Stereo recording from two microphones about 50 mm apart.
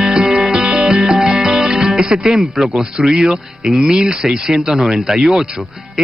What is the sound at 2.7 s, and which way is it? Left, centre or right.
Speech, centre.